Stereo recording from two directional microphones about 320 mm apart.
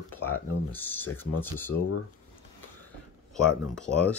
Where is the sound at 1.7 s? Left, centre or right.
Left.